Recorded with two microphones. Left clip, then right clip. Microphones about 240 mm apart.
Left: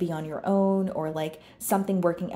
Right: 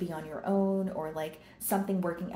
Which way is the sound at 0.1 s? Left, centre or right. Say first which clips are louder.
Left 5 dB; left.